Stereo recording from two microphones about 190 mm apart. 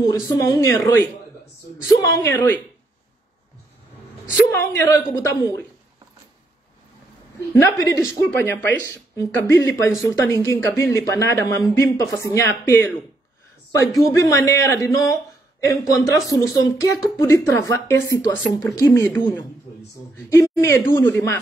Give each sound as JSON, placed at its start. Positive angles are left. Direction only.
{"t": 0.0, "sound": "speech", "side_deg": 20}
{"t": 4.5, "sound": "speech", "side_deg": 15}
{"t": 7.5, "sound": "speech", "side_deg": 15}
{"t": 20.2, "sound": "speech", "side_deg": 15}